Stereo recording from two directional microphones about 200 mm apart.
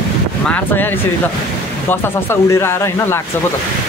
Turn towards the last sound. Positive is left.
turn(degrees=15)  # may be behind; listen again after turning